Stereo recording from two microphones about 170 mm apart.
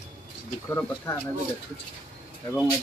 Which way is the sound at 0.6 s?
15° left (ahead or behind).